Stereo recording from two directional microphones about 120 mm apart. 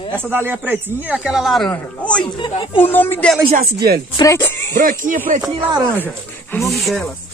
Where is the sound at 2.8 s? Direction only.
15° left (ahead or behind).